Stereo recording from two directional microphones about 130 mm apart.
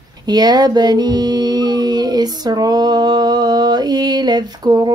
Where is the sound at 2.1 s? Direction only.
30° right (ahead or behind).